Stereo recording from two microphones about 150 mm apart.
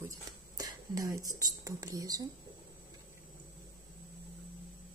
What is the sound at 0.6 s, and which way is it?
Speech, 25° right (ahead or behind).